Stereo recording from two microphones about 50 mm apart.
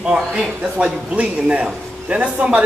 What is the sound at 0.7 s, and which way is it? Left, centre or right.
Speech, right.